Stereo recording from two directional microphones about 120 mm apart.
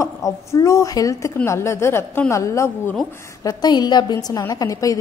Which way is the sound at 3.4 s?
35° left (ahead or behind).